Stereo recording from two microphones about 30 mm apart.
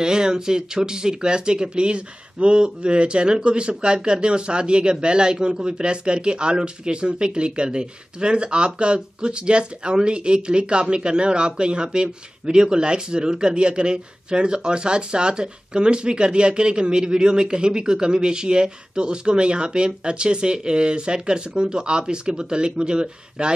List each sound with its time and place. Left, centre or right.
0.0 s speech: right